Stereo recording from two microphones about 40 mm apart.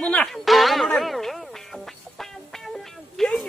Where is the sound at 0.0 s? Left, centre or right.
Left.